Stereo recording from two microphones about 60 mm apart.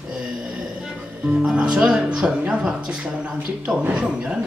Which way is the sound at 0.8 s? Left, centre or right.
Centre.